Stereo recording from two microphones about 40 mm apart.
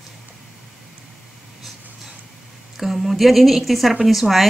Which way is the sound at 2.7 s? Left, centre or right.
Centre.